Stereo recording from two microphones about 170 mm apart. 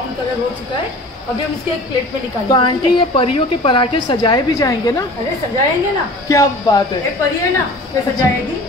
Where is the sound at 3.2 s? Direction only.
30° left (ahead or behind).